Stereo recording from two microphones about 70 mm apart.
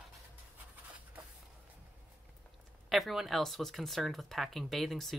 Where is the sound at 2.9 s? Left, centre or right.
Centre.